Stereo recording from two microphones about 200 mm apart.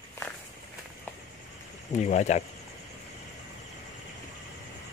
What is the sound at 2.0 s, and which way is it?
Speech, 35° left (ahead or behind).